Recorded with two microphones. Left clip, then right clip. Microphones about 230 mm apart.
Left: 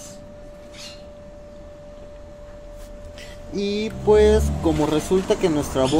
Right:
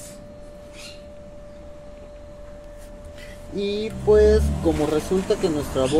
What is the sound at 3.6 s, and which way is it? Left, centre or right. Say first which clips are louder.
Speech: left 1 dB; left.